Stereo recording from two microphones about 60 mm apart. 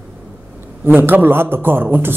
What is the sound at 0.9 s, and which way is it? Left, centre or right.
A man's voice, right.